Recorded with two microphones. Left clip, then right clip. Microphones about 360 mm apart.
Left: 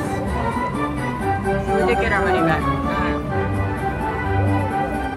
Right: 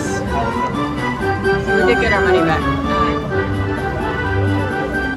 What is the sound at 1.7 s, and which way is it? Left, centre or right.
Music, centre.